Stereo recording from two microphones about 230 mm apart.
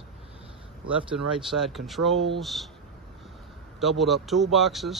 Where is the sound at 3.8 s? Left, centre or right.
Centre.